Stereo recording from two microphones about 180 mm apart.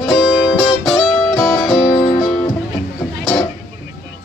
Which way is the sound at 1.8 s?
25° left (ahead or behind).